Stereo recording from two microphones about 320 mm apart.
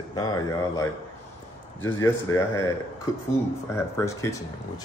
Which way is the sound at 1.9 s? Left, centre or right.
Centre.